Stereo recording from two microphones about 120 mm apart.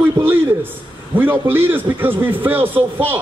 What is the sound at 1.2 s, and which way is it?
A man's voice, 15° right (ahead or behind).